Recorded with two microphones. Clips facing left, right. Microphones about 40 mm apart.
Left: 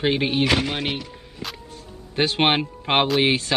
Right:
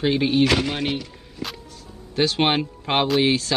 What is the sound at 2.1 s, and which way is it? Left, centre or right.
Speech, left.